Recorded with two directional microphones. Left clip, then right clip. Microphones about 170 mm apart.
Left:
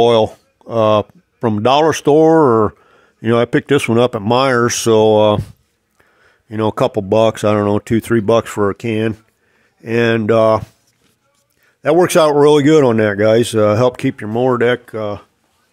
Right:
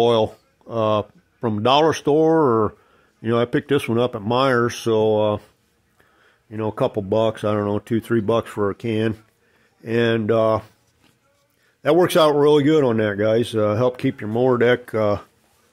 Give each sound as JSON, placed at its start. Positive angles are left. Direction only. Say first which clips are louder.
{"t": 0.0, "sound": "speech", "louder": "left 6 dB", "side_deg": 30}
{"t": 6.5, "sound": "speech", "louder": "left 7 dB", "side_deg": 40}
{"t": 11.8, "sound": "speech", "louder": "left 4 dB", "side_deg": 25}
{"t": 14.9, "sound": "speech", "louder": "right 2 dB", "side_deg": -10}